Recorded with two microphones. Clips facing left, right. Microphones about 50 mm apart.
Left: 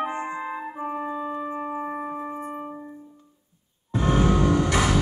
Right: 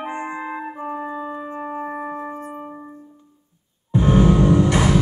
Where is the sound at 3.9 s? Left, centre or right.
Right.